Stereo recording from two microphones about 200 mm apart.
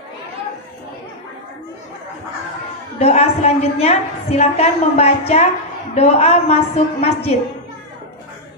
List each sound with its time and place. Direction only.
3.0 s a woman's voice: 30° left (ahead or behind)